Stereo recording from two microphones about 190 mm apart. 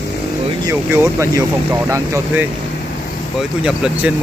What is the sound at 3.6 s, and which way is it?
Speech, 5° right (ahead or behind).